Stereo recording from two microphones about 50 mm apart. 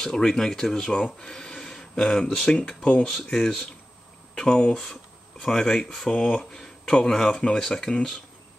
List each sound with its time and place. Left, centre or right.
0.0 s speech: centre
3.1 s speech: centre